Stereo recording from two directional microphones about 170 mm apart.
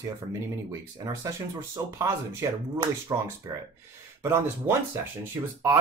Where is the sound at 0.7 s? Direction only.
20° right (ahead or behind).